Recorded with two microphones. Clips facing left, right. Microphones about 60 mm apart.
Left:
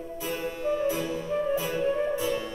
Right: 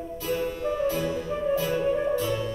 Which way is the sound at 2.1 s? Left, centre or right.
Centre.